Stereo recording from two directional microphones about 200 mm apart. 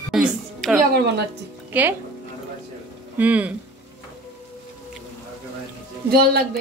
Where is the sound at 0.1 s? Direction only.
Centre (ahead or behind).